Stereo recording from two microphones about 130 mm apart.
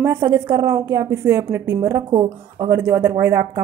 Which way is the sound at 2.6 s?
20° right (ahead or behind).